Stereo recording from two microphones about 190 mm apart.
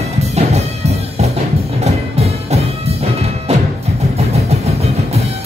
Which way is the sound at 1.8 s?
35° right (ahead or behind).